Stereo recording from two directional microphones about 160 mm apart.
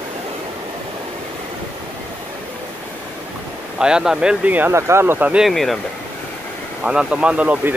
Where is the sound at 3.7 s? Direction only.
5° right (ahead or behind).